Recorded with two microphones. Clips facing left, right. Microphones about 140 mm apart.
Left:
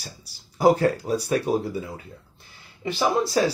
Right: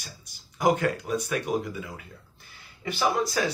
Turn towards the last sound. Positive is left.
turn(degrees=30)  # may be behind; listen again after turning